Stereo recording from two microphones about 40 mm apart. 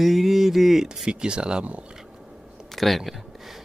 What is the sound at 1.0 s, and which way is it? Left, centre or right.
Speech, right.